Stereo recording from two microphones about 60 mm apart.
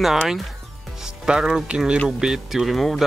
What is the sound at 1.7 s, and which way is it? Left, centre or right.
Speech, centre.